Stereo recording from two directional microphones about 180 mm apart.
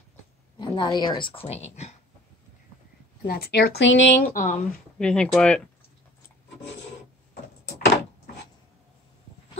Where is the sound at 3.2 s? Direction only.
60° left (ahead or behind); by 4.2 s 85° left.